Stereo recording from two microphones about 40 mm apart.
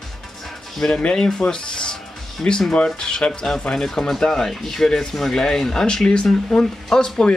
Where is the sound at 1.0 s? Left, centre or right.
Left.